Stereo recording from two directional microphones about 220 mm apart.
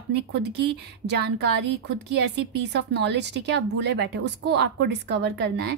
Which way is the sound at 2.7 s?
50° right (ahead or behind).